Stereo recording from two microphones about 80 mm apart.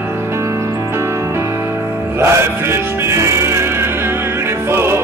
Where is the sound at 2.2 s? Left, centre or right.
Right.